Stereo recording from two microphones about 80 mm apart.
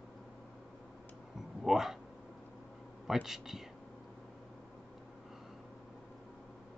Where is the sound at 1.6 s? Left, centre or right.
Centre.